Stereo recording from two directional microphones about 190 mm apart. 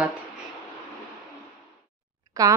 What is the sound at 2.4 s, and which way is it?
Speech, 20° right (ahead or behind).